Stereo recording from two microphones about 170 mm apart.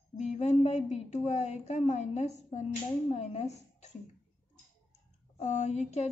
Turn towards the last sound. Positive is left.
turn(degrees=40)  # may be behind; listen again after turning